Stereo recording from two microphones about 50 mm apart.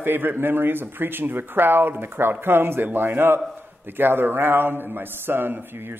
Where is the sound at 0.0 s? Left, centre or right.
Right.